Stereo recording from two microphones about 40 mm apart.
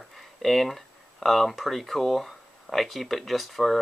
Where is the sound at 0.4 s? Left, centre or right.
Centre.